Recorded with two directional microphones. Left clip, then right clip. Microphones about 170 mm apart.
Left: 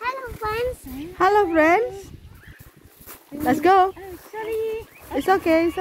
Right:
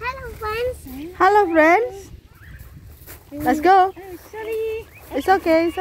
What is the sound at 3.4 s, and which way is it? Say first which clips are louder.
Speech: right 2 dB; 10° left (ahead or behind).